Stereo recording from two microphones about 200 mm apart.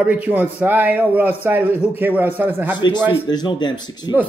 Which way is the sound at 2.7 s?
20° left (ahead or behind).